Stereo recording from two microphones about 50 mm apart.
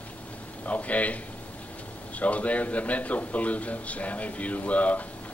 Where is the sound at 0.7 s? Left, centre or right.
Left.